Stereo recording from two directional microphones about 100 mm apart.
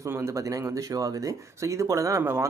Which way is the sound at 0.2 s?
35° right (ahead or behind).